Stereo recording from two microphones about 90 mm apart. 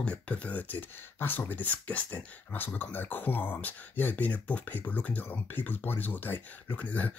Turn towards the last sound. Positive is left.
turn(degrees=15)  # may be behind; listen again after turning